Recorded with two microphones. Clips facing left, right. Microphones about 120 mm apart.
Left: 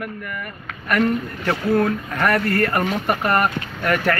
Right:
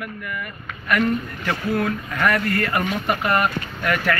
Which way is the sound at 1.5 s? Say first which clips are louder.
Left 4 dB; 30° left (ahead or behind).